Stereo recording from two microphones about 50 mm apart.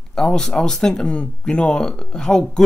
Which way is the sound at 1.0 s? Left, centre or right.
Left.